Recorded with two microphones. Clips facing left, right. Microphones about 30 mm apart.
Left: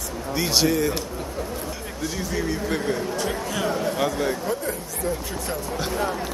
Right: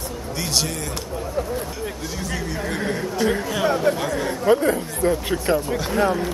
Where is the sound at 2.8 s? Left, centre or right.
Centre.